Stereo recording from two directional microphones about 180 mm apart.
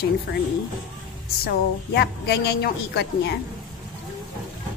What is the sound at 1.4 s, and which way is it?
A woman's voice, 65° left (ahead or behind).